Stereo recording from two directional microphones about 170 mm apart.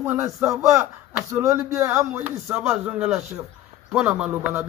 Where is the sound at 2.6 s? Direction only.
5° right (ahead or behind).